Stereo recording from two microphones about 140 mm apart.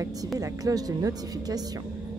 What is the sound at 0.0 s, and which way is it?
A woman's voice, 25° right (ahead or behind).